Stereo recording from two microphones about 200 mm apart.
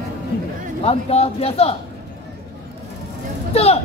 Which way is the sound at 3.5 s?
30° left (ahead or behind).